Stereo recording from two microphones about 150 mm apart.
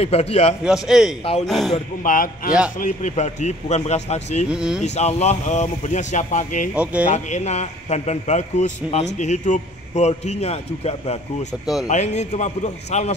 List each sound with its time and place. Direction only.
0.0 s a man's voice: 45° left (ahead or behind)
0.7 s a man's voice: 5° right (ahead or behind)
1.7 s a man's voice: 60° left (ahead or behind)
4.5 s a man's voice: 5° right (ahead or behind)
4.8 s a man's voice: 50° left (ahead or behind)
6.7 s speech: 10° right (ahead or behind)
7.1 s a man's voice: 50° left (ahead or behind)
11.6 s a man's voice: 5° right (ahead or behind)
11.9 s a man's voice: 50° left (ahead or behind)